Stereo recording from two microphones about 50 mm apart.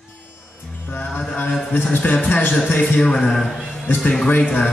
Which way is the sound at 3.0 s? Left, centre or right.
Centre.